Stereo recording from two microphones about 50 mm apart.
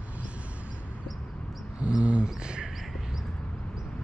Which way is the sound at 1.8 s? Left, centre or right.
Right.